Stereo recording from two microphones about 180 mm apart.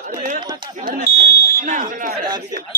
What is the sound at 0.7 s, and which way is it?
Speech, 40° right (ahead or behind).